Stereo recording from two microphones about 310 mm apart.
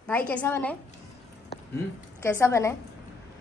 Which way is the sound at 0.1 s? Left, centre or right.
Centre.